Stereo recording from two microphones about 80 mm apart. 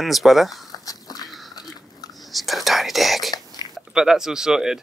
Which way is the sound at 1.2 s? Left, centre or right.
Centre.